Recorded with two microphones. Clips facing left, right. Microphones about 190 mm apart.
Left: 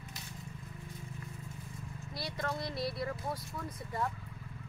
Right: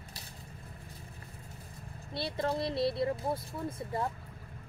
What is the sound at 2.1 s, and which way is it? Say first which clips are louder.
Speech: right 6 dB; 30° right (ahead or behind).